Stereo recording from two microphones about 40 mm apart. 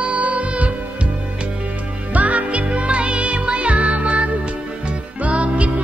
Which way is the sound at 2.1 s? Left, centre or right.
Right.